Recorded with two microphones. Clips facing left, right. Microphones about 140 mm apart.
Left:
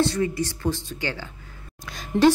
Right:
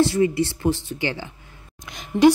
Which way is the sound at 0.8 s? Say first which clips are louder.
Right 4 dB; 15° right (ahead or behind).